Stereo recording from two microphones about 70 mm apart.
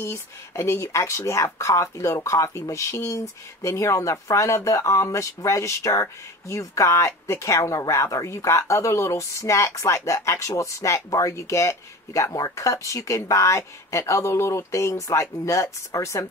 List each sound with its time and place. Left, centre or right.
0.0 s speech: left